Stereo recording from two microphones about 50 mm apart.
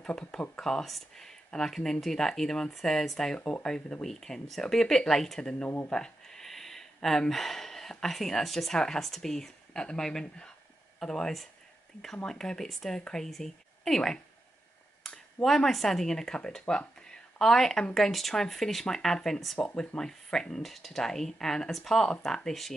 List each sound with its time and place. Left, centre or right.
0.0 s speech: centre
15.0 s a sound: centre
15.4 s speech: centre